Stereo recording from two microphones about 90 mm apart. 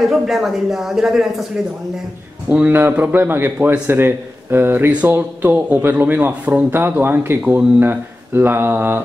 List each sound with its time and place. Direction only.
0.1 s speech: 5° right (ahead or behind)
2.5 s a man's voice: 20° right (ahead or behind)